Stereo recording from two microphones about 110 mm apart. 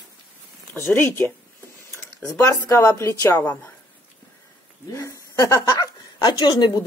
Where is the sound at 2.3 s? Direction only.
25° left (ahead or behind).